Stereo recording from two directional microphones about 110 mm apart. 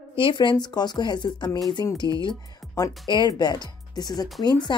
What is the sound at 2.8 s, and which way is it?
Speech, 40° left (ahead or behind).